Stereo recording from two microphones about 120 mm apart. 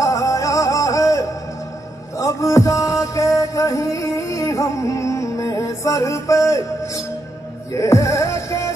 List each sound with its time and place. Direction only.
0.0 s music: 25° left (ahead or behind)
7.7 s music: 25° left (ahead or behind)